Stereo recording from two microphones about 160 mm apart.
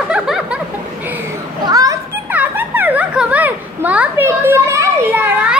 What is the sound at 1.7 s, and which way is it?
Children playing, 25° right (ahead or behind).